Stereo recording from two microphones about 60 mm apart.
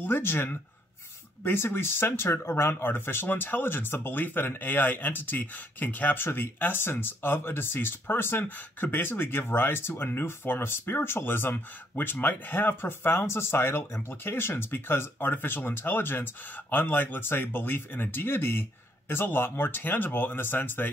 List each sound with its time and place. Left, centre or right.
0.0 s speech: left